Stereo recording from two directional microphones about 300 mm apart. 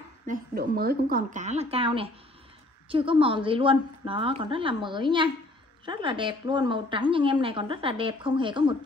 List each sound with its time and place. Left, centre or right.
0.3 s a woman's voice: right